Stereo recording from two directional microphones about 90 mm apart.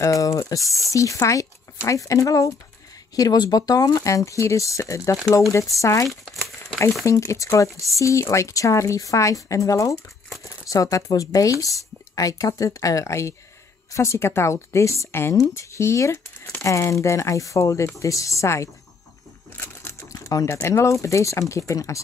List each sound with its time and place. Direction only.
0.0 s speech: 40° left (ahead or behind)
6.0 s crumpling: centre (ahead or behind)
7.1 s speech: 35° left (ahead or behind)
19.5 s a sound: 25° left (ahead or behind)
19.9 s a sound: 40° left (ahead or behind)
20.6 s speech: 35° left (ahead or behind)